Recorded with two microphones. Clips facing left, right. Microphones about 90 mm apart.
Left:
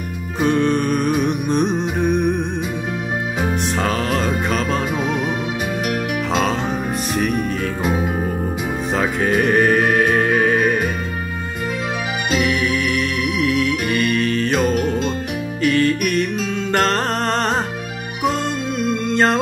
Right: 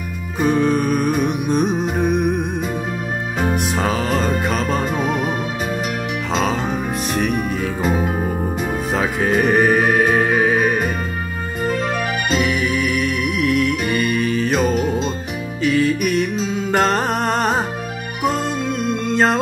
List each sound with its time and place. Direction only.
0.4 s music: 5° right (ahead or behind)
3.5 s music: 5° right (ahead or behind)
6.3 s music: centre (ahead or behind)
12.3 s music: centre (ahead or behind)